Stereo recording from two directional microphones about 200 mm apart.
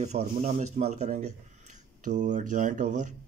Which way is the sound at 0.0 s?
35° right (ahead or behind).